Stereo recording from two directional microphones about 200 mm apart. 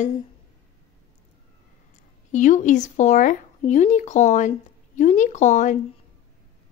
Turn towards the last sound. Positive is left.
turn(degrees=35)  # may be behind; listen again after turning